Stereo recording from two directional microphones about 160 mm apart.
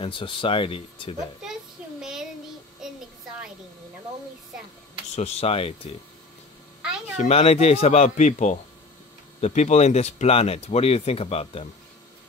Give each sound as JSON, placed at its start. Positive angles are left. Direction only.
{"t": 0.0, "sound": "speech", "side_deg": 35}
{"t": 1.4, "sound": "child singing", "side_deg": -5}
{"t": 5.1, "sound": "speech", "side_deg": 40}
{"t": 7.2, "sound": "speech", "side_deg": 40}